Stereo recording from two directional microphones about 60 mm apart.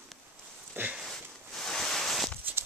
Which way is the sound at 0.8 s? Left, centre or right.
Right.